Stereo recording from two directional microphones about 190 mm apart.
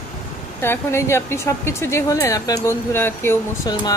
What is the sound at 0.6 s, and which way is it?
Speech, 15° left (ahead or behind).